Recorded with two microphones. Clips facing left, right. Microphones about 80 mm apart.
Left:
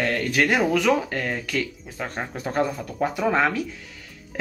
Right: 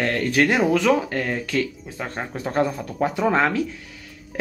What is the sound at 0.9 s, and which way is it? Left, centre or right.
Speech, centre.